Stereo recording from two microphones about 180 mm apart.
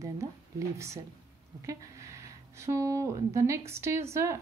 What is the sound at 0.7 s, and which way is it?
Speech, 15° right (ahead or behind).